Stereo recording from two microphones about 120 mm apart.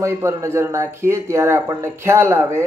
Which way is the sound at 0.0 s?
20° right (ahead or behind).